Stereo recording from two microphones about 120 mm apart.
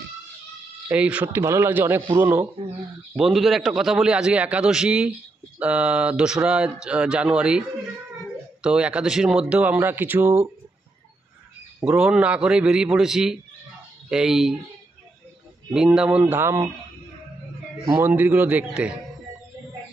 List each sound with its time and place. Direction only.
0.8 s speech: 10° right (ahead or behind)
3.2 s a man's voice: centre (ahead or behind)
8.6 s speech: 10° right (ahead or behind)
11.8 s speech: 5° right (ahead or behind)
15.7 s speech: 5° right (ahead or behind)
18.0 s speech: 15° right (ahead or behind)